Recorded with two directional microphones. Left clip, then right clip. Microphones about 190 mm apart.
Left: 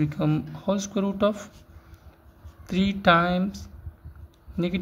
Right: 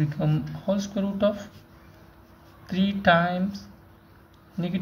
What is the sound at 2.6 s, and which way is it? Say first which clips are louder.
Speech: left 1 dB; 40° left (ahead or behind).